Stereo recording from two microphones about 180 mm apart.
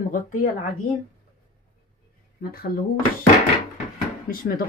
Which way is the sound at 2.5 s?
55° left (ahead or behind).